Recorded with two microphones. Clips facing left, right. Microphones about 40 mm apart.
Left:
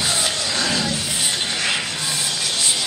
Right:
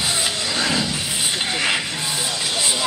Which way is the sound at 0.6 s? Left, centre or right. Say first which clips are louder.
Right 2 dB; right.